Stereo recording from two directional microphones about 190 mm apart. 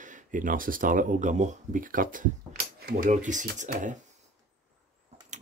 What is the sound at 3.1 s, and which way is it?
Speech, 40° right (ahead or behind).